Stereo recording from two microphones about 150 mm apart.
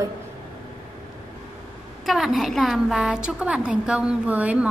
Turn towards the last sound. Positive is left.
turn(degrees=-10)  # may be behind; listen again after turning